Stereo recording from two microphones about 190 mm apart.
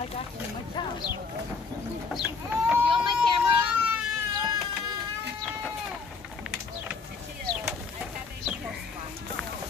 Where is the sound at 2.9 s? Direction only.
25° right (ahead or behind).